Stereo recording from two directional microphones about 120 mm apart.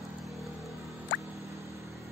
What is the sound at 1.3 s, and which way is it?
Music, 25° right (ahead or behind).